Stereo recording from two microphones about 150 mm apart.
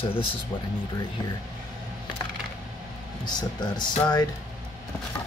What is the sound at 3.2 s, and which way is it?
Speech, 30° left (ahead or behind).